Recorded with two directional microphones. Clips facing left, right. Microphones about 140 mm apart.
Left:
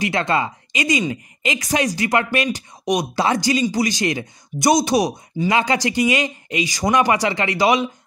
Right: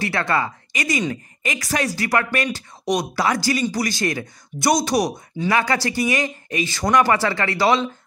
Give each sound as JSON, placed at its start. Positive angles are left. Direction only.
{"t": 0.0, "sound": "speech", "side_deg": 20}